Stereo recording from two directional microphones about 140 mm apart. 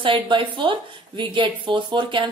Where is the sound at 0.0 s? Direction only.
35° right (ahead or behind).